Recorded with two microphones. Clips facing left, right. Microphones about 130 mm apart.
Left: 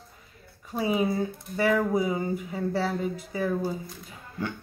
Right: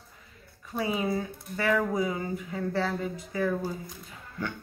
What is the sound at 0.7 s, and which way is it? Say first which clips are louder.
Speech: left 3 dB; 25° left (ahead or behind).